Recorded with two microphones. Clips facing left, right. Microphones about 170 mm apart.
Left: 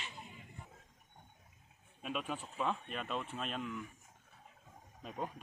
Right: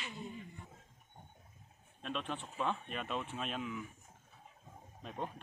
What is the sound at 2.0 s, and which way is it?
Speech, 5° left (ahead or behind).